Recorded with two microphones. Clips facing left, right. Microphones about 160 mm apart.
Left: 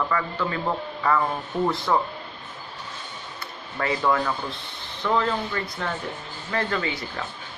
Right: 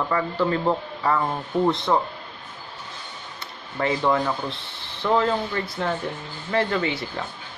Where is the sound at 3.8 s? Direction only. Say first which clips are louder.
Right 2 dB; 25° right (ahead or behind).